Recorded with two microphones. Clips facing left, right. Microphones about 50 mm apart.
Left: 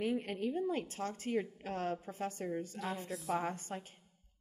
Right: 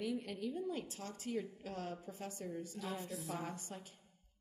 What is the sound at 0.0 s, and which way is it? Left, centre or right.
A woman's voice, left.